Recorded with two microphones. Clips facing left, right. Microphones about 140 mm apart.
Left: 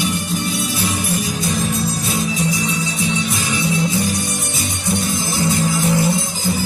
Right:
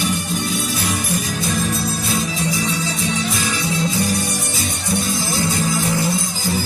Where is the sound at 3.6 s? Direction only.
20° left (ahead or behind).